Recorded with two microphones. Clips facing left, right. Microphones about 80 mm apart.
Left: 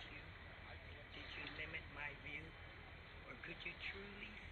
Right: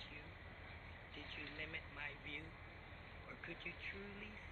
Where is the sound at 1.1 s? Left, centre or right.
Centre.